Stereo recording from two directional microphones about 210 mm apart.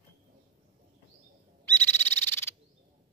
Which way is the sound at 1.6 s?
10° left (ahead or behind).